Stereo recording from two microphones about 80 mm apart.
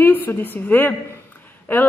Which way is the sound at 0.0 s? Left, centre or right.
Left.